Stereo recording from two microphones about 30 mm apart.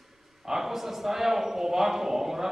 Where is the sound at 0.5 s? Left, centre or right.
Centre.